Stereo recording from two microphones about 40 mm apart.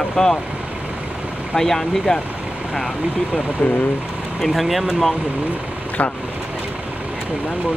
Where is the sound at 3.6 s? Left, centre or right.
Left.